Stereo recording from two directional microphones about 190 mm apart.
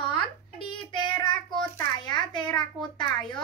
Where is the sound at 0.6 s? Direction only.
25° left (ahead or behind).